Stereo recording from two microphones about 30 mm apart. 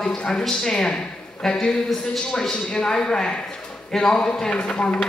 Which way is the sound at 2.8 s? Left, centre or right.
Left.